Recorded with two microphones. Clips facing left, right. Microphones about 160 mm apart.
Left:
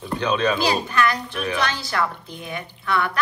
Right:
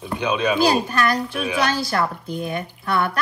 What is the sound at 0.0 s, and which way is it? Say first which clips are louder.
Speech: even; 10° right (ahead or behind).